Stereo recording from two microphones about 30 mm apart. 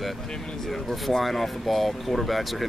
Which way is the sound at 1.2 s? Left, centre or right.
Centre.